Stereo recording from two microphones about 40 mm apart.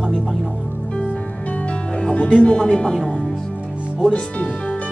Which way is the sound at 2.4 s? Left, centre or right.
Left.